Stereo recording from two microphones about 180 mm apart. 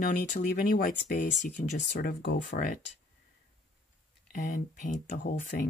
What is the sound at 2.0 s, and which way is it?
Speech, 65° left (ahead or behind).